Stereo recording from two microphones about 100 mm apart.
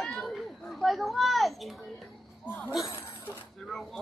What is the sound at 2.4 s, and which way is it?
Speech, 15° left (ahead or behind).